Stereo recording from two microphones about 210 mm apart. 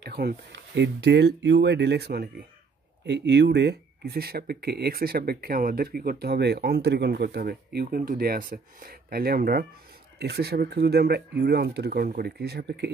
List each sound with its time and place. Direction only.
0.0 s speech: 50° right (ahead or behind)